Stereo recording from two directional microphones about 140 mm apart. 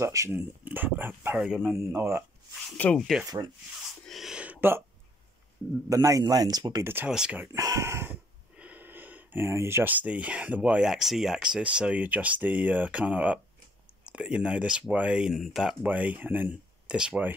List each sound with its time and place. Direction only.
0.0 s speech: 20° right (ahead or behind)
1.5 s speech: centre (ahead or behind)
1.9 s speech: 20° right (ahead or behind)
2.8 s speech: 5° left (ahead or behind)
3.3 s speech: 25° right (ahead or behind)
4.0 s a sound: centre (ahead or behind); by 4.8 s 15° right (ahead or behind)
5.9 s speech: 25° right (ahead or behind)
7.1 s speech: 5° right (ahead or behind)
7.5 s speech: 20° right (ahead or behind); by 17.3 s 5° right (ahead or behind)